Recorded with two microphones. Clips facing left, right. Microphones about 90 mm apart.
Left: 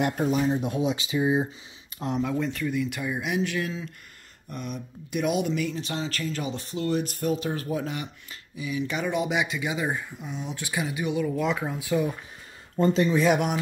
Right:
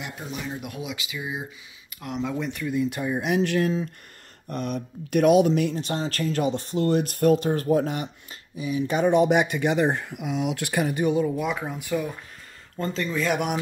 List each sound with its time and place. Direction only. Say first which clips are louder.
0.0 s speech: left 11 dB; 50° left (ahead or behind)
0.5 s speech: left 8 dB; 25° left (ahead or behind)
2.7 s speech: right 3 dB; 30° right (ahead or behind)
3.2 s speech: right 6 dB; 50° right (ahead or behind)
4.5 s speech: right 6 dB; 60° right (ahead or behind)
11.3 s speech: left 1 dB; centre (ahead or behind)
12.7 s speech: left 6 dB; 20° left (ahead or behind)
13.3 s speech: left 2 dB; centre (ahead or behind)